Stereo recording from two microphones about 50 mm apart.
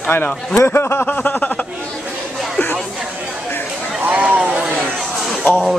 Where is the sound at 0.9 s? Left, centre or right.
Left.